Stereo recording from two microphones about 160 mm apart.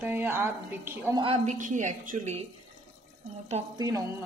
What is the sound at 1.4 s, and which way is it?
Speech, 50° right (ahead or behind).